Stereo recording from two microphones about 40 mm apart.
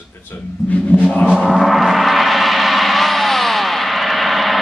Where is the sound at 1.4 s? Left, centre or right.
Centre.